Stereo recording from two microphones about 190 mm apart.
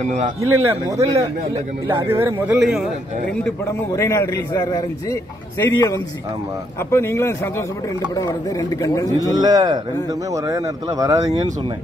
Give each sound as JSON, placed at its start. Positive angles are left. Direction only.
{"t": 0.0, "sound": "speech", "side_deg": -40}
{"t": 0.4, "sound": "speech", "side_deg": -15}
{"t": 3.9, "sound": "a man's voice", "side_deg": 15}
{"t": 9.3, "sound": "speech", "side_deg": -20}